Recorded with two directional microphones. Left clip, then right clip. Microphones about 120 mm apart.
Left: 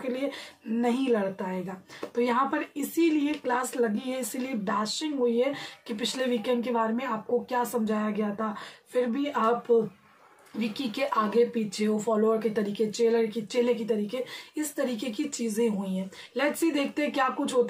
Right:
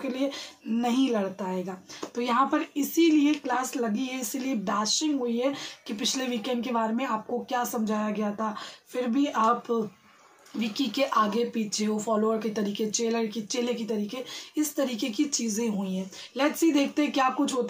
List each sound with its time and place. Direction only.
0.1 s speech: 15° right (ahead or behind)
16.3 s speech: 10° right (ahead or behind)